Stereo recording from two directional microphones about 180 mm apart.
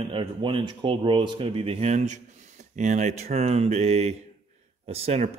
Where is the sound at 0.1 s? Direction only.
30° right (ahead or behind).